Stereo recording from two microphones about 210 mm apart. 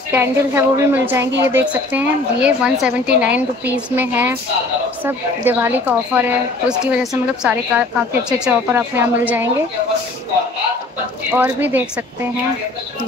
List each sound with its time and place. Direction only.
0.1 s a woman's voice: 10° right (ahead or behind)
11.3 s a woman's voice: 10° right (ahead or behind)